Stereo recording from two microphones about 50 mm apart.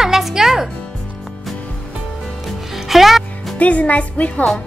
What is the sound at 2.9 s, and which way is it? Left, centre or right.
Music, centre.